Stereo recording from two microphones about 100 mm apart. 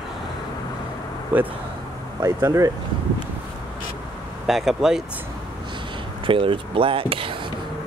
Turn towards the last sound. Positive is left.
turn(degrees=-65)  # may be behind; listen again after turning